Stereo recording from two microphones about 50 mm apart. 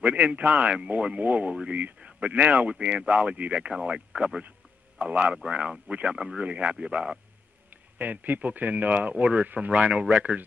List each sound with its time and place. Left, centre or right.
0.0 s speech: right
2.0 s speech: right
4.9 s speech: right
7.7 s speech: right